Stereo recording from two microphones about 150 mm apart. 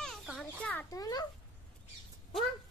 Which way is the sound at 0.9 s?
25° left (ahead or behind).